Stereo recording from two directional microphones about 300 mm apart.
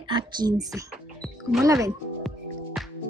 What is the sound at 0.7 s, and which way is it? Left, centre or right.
Music, centre.